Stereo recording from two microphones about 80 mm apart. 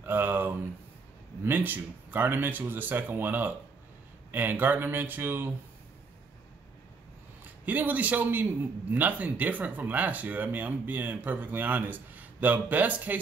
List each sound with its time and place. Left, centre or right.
0.0 s a sound: right
1.4 s speech: right
7.6 s speech: right